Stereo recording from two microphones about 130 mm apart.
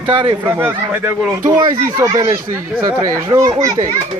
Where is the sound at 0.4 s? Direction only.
15° right (ahead or behind).